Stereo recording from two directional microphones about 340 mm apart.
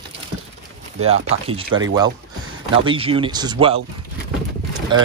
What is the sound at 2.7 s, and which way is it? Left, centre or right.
Speech, centre.